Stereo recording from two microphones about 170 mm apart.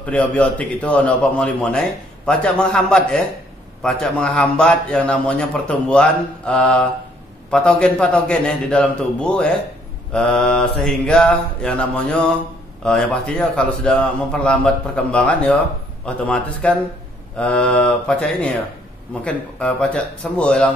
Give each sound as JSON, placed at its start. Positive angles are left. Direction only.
{"t": 0.0, "sound": "a man's voice", "side_deg": 10}